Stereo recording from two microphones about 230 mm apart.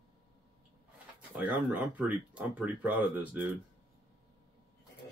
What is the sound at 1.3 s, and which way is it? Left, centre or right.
Speech, centre.